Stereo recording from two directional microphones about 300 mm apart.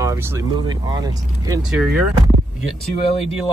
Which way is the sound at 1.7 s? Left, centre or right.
Centre.